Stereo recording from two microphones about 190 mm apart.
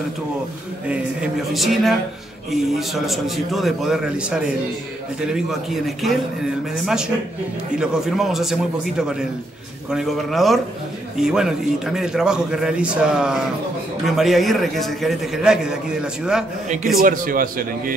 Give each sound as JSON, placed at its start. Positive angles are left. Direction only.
{"t": 0.8, "sound": "a man's voice", "side_deg": -5}
{"t": 7.8, "sound": "a man's voice", "side_deg": -5}
{"t": 16.6, "sound": "a man's voice", "side_deg": -45}